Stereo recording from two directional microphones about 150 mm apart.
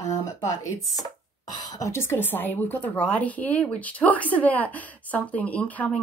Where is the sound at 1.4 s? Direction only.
25° left (ahead or behind).